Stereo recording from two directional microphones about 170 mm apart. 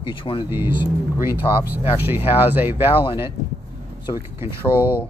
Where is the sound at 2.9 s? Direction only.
30° left (ahead or behind).